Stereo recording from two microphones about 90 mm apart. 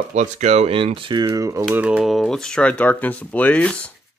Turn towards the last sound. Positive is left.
turn(degrees=15)  # may be behind; listen again after turning